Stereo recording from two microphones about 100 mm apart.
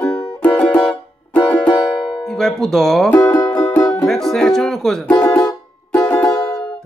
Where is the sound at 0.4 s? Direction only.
10° left (ahead or behind).